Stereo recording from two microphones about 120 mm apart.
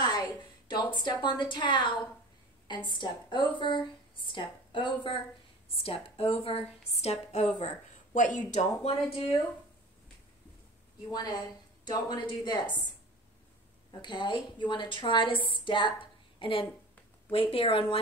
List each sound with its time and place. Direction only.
1.0 s a woman's voice: 40° left (ahead or behind); by 7.5 s 65° left (ahead or behind)
7.6 s speech: 90° left; by 9.2 s 65° left (ahead or behind)
11.1 s a woman's voice: 35° left (ahead or behind)
14.0 s a woman's voice: 40° left (ahead or behind)